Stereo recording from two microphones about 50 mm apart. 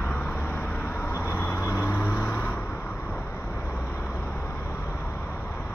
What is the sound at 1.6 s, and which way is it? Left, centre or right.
Vehicle, left.